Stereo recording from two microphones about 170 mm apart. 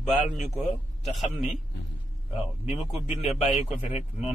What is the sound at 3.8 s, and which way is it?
Speech, 35° left (ahead or behind).